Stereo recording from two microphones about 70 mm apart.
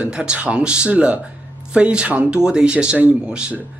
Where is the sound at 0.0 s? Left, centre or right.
Centre.